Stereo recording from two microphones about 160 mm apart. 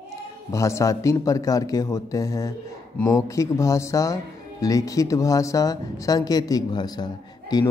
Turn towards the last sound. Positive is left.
turn(degrees=25)  # may be behind; listen again after turning